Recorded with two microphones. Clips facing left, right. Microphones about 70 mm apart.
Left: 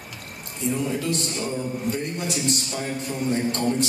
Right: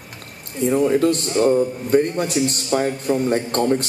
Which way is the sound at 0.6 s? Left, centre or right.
Right.